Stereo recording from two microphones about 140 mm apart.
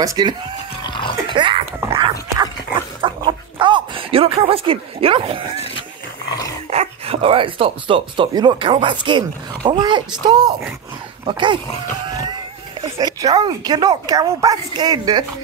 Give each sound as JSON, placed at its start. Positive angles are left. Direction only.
{"t": 0.0, "sound": "a woman's voice", "side_deg": -30}
{"t": 0.8, "sound": "music", "side_deg": 35}
{"t": 1.3, "sound": "a sound", "side_deg": -35}
{"t": 2.0, "sound": "dog", "side_deg": -35}
{"t": 3.0, "sound": "a sound", "side_deg": -35}
{"t": 6.7, "sound": "speech", "side_deg": -45}
{"t": 12.0, "sound": "music", "side_deg": -30}
{"t": 13.0, "sound": "a woman's voice", "side_deg": -30}